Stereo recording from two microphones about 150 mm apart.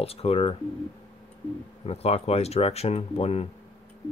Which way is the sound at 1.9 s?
45° left (ahead or behind).